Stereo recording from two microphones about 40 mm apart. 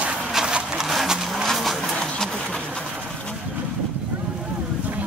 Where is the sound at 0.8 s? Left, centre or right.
Centre.